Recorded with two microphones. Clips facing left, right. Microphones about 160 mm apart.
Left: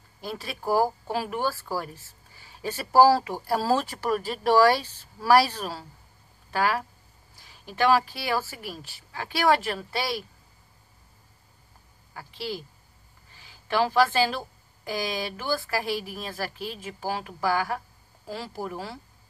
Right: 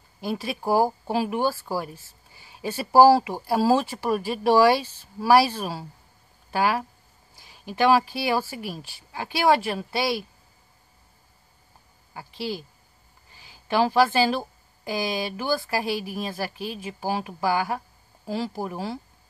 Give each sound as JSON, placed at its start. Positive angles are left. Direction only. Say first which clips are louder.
{"t": 0.2, "sound": "speech", "louder": "right 5 dB", "side_deg": -15}
{"t": 12.1, "sound": "a woman's voice", "louder": "right 3 dB", "side_deg": -20}
{"t": 13.7, "sound": "a woman's voice", "louder": "right 2 dB", "side_deg": -20}